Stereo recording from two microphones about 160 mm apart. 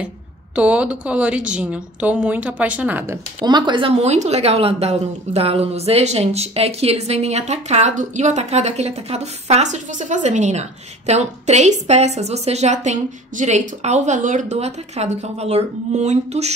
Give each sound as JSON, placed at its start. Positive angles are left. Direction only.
{"t": 0.6, "sound": "a woman's voice", "side_deg": -5}
{"t": 3.4, "sound": "a woman's voice", "side_deg": -30}